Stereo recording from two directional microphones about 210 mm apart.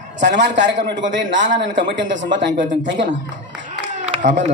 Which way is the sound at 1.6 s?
55° right (ahead or behind).